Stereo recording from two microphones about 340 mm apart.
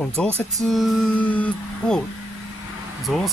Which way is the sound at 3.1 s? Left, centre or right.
Centre.